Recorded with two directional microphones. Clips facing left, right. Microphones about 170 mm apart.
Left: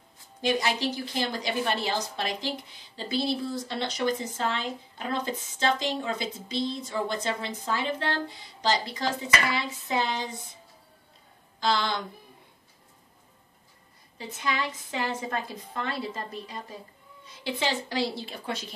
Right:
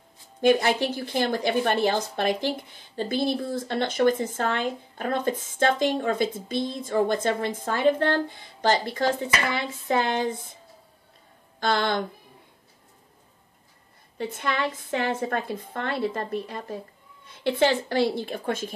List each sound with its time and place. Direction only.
0.4 s speech: 55° right (ahead or behind)
11.6 s speech: 55° right (ahead or behind)
14.1 s a woman's voice: 55° right (ahead or behind)